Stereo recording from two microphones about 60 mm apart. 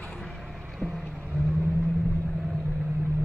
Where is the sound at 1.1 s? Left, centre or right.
Right.